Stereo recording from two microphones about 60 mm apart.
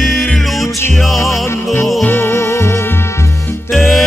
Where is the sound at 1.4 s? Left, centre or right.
Left.